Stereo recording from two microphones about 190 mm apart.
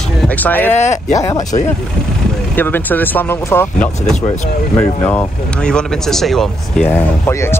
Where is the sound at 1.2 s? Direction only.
20° left (ahead or behind).